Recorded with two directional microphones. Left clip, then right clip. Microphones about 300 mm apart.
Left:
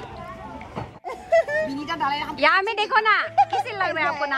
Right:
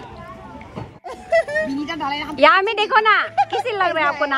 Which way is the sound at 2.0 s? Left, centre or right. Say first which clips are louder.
Right 5 dB; centre.